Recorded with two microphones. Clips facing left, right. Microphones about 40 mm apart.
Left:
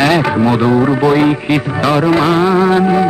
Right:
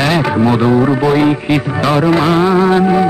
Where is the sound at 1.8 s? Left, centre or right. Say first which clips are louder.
Even; centre.